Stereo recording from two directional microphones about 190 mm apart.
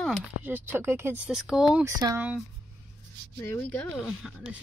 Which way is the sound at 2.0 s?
20° right (ahead or behind).